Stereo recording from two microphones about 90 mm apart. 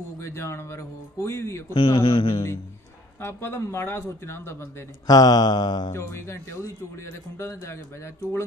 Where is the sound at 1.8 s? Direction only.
60° left (ahead or behind).